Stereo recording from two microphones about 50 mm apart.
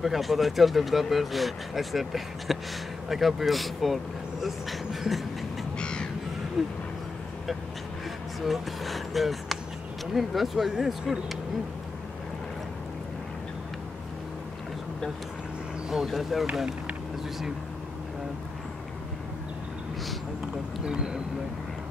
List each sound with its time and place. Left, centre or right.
0.0 s speech: centre
5.8 s crow: centre
6.6 s speech: centre
8.4 s speech: centre
16.1 s speech: centre
20.8 s speech: centre